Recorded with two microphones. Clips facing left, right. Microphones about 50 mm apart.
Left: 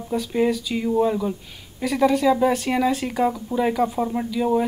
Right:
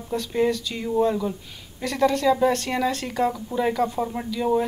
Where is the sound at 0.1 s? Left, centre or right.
Centre.